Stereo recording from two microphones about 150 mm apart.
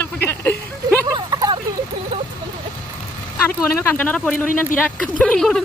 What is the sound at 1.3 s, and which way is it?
Speech, 25° right (ahead or behind).